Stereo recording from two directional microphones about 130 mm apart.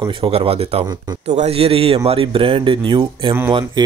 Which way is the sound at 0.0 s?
45° right (ahead or behind).